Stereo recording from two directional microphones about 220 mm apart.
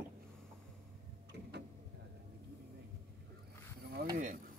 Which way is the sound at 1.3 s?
50° right (ahead or behind).